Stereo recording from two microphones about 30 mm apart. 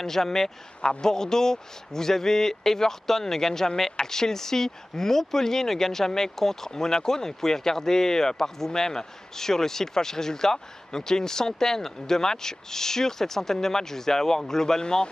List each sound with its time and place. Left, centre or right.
0.0 s a man's voice: centre